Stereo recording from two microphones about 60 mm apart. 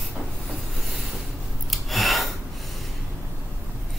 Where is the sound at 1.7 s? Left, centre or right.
Centre.